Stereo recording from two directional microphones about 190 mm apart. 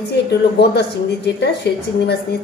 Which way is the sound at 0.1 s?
60° left (ahead or behind).